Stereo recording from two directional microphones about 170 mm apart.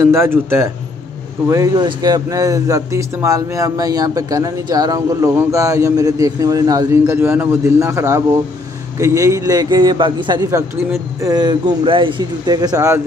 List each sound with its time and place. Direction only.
0.1 s speech: 15° right (ahead or behind)